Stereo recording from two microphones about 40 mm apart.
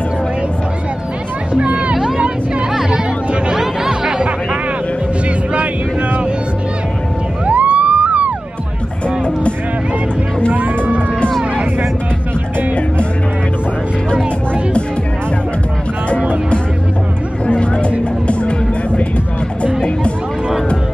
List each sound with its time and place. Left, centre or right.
1.5 s music: right
2.0 s vehicle: right
3.5 s music: centre
7.4 s music: right
17.6 s a sound: left
18.2 s music: left